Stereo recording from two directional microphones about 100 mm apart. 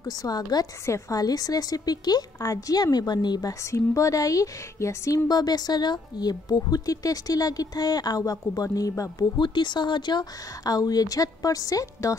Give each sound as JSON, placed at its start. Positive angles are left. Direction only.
{"t": 0.0, "sound": "speech", "side_deg": 40}
{"t": 0.8, "sound": "speech", "side_deg": 30}
{"t": 9.4, "sound": "speech", "side_deg": 50}